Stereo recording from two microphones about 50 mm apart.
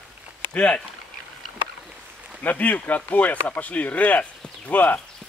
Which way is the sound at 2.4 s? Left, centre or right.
Left.